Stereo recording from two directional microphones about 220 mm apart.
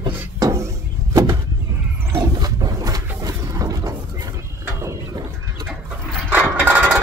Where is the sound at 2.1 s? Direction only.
15° right (ahead or behind).